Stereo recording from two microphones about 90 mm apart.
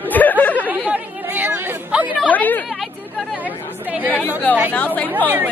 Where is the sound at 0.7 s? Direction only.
20° right (ahead or behind).